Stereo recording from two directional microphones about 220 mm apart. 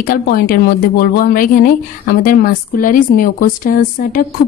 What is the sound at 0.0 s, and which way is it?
A woman's voice, 40° left (ahead or behind).